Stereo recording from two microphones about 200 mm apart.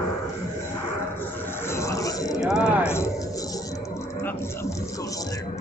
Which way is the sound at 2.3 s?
5° right (ahead or behind).